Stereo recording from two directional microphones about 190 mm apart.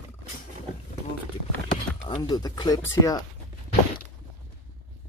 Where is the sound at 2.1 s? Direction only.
20° left (ahead or behind).